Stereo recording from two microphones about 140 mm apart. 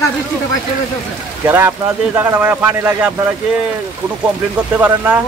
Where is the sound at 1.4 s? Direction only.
15° right (ahead or behind).